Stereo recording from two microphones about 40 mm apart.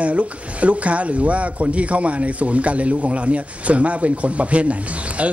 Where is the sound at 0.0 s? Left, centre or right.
Right.